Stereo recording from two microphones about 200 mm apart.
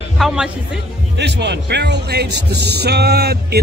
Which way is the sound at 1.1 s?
60° right (ahead or behind).